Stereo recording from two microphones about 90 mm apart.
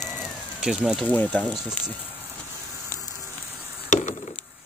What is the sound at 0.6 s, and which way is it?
Speech, 10° right (ahead or behind).